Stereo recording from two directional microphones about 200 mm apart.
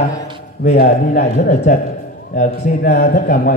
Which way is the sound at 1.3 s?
35° left (ahead or behind).